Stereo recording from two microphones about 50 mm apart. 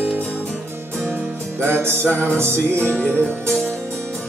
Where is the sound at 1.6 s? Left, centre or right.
Right.